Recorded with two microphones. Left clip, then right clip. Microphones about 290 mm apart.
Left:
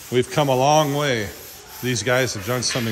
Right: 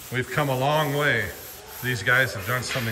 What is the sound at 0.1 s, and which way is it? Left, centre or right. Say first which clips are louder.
Speech: left 6 dB; centre.